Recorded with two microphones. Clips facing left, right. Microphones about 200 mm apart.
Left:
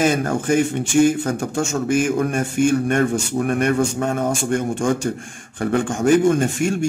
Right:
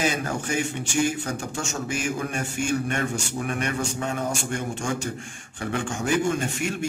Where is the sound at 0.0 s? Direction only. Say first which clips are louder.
Left 7 dB; 50° left (ahead or behind).